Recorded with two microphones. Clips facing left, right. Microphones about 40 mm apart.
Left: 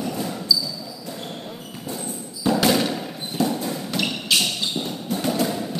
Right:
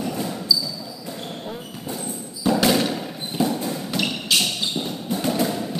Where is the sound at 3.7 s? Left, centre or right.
Centre.